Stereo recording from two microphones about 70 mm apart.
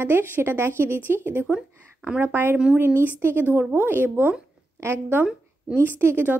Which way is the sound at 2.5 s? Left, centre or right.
Right.